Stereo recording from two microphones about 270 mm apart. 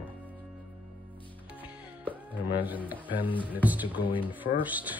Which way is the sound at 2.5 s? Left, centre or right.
Centre.